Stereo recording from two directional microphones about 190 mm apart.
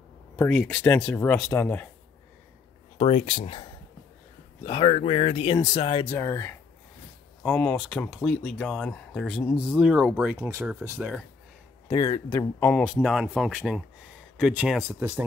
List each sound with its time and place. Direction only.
0.4 s speech: 5° left (ahead or behind)
3.0 s speech: 35° left (ahead or behind)
4.6 s speech: 25° left (ahead or behind)
6.0 s speech: 15° left (ahead or behind); by 11.1 s 15° right (ahead or behind)
11.9 s speech: 20° left (ahead or behind)
12.8 s speech: 5° right (ahead or behind)